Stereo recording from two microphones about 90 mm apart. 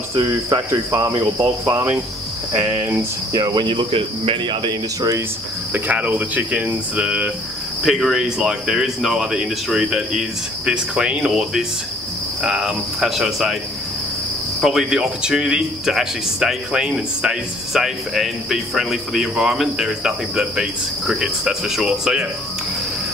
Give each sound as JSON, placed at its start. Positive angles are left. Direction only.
{"t": 0.1, "sound": "cricket", "side_deg": -50}
{"t": 0.7, "sound": "cricket", "side_deg": -35}
{"t": 3.5, "sound": "speech", "side_deg": -65}
{"t": 5.7, "sound": "speech", "side_deg": -15}
{"t": 14.6, "sound": "speech", "side_deg": -5}